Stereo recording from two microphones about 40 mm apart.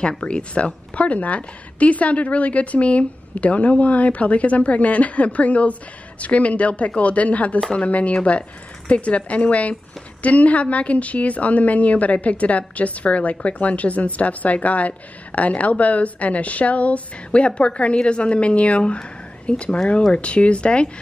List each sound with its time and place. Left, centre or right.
0.2 s a woman's voice: left